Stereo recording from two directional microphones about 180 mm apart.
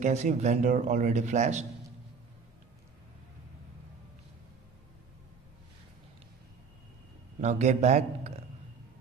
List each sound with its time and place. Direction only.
0.0 s speech: 40° right (ahead or behind)
7.3 s speech: 40° right (ahead or behind)